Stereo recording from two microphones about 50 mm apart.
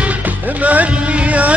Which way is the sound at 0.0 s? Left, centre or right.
Right.